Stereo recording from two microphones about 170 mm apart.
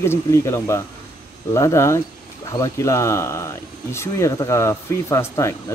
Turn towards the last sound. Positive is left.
turn(degrees=15)  # may be behind; listen again after turning